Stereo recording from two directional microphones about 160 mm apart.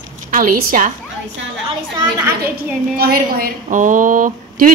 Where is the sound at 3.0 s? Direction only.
70° right (ahead or behind).